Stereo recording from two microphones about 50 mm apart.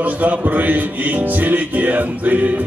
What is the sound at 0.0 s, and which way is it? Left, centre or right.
Music, right.